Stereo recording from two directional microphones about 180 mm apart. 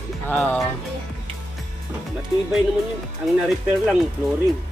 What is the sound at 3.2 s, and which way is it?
Speech, 5° right (ahead or behind).